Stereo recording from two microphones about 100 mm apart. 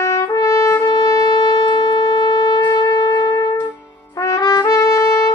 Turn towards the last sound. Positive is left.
turn(degrees=35)  # may be behind; listen again after turning